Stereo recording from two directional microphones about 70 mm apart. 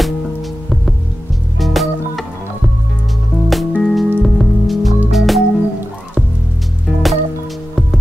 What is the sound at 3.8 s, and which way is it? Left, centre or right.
Music, centre.